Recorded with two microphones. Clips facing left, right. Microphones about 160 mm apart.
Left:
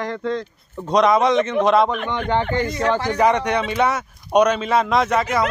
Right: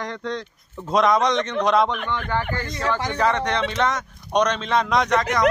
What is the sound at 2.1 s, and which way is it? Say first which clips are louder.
A man's voice: left 4 dB; 20° left (ahead or behind).